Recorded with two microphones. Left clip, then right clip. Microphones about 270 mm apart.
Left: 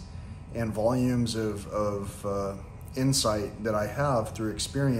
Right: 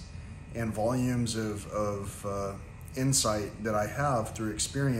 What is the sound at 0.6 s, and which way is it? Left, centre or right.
Speech, centre.